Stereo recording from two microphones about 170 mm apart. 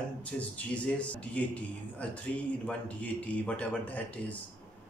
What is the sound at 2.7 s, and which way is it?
Speech, 10° left (ahead or behind).